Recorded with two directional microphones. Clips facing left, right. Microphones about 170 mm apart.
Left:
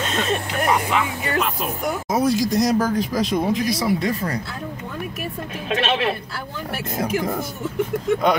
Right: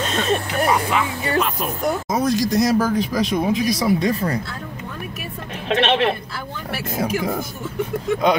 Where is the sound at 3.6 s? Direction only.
20° right (ahead or behind).